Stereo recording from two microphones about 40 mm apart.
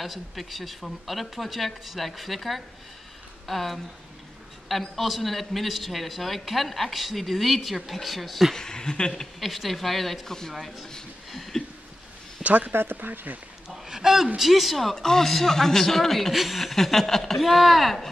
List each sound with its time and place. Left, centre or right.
0.0 s a man's voice: centre
8.5 s speech: centre
9.1 s a man's voice: centre
11.3 s a sound: centre
12.4 s speech: right
13.8 s a man's voice: centre